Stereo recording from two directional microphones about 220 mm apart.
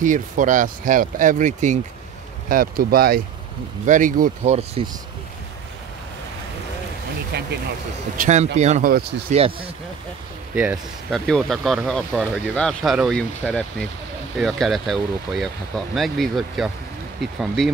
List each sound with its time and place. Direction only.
0.0 s speech: 35° right (ahead or behind)
7.3 s speech: 50° right (ahead or behind)
8.2 s speech: 35° right (ahead or behind)
10.5 s speech: 5° right (ahead or behind)